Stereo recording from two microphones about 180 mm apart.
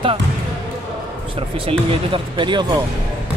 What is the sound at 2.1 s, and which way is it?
Speech, 25° right (ahead or behind).